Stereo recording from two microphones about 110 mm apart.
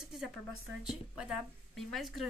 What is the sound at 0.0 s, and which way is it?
A woman's voice, 5° right (ahead or behind).